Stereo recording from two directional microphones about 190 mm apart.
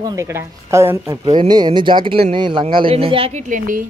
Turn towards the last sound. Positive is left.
turn(degrees=-45)  # may be behind; listen again after turning